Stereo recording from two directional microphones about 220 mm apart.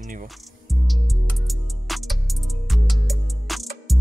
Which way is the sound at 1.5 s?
Centre (ahead or behind).